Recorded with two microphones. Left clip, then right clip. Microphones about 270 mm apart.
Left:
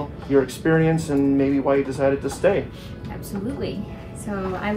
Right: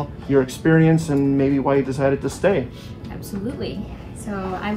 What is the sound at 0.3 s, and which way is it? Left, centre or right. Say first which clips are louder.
Speech: right 1 dB; right.